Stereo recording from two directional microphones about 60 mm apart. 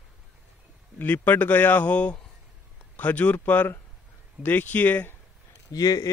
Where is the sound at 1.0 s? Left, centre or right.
Left.